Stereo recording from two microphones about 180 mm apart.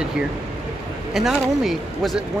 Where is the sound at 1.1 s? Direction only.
Centre (ahead or behind).